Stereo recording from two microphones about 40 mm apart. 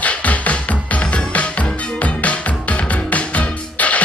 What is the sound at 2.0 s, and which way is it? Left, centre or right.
Music, left.